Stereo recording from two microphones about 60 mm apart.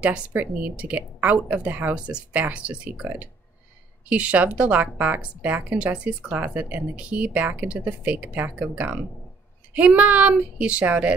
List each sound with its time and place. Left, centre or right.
0.0 s a woman's voice: right
3.0 s speech: right
4.1 s a woman's voice: right